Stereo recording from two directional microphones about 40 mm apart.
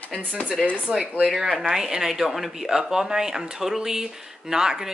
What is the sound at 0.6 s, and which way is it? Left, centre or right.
Speech, left.